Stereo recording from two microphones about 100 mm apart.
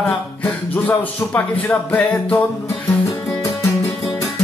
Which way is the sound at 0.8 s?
15° left (ahead or behind).